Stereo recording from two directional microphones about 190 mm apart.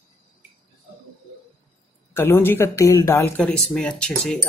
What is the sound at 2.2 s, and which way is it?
Speech, 10° left (ahead or behind).